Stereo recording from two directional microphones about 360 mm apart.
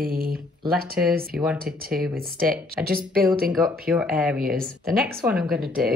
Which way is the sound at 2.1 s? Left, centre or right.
Right.